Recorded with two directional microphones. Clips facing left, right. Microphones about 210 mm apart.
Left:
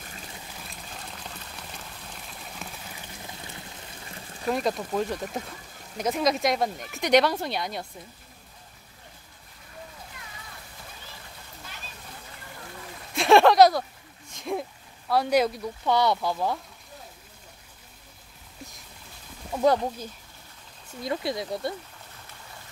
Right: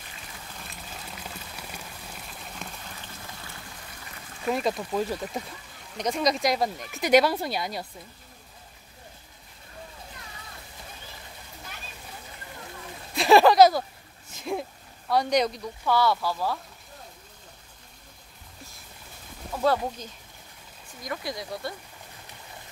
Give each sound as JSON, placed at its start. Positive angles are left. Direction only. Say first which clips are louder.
{"t": 0.7, "sound": "pour", "louder": "even", "side_deg": -5}
{"t": 4.5, "sound": "speech", "louder": "even", "side_deg": 0}
{"t": 13.1, "sound": "a sound", "louder": "even", "side_deg": 0}
{"t": 15.0, "sound": "speech", "louder": "left 1 dB", "side_deg": 5}
{"t": 15.8, "sound": "speech", "louder": "even", "side_deg": 20}
{"t": 19.6, "sound": "speech", "louder": "left 2 dB", "side_deg": 15}